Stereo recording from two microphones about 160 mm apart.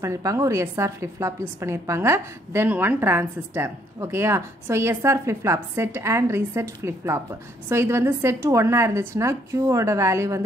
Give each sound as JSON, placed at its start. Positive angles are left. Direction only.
{"t": 0.0, "sound": "a woman's voice", "side_deg": -20}